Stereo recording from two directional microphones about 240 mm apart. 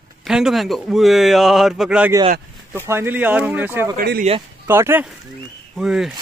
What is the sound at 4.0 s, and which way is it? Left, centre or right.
Speech, right.